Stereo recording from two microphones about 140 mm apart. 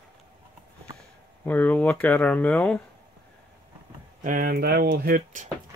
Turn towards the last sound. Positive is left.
turn(degrees=-80)